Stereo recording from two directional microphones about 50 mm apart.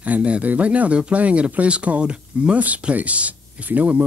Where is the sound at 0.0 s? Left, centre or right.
Right.